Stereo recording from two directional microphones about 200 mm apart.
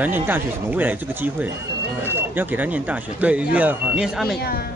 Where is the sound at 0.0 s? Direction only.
10° right (ahead or behind).